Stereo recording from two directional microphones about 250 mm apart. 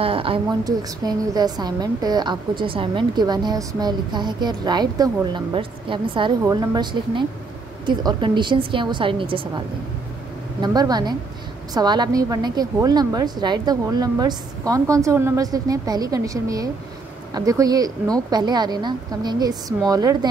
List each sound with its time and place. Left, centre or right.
0.0 s a woman's voice: right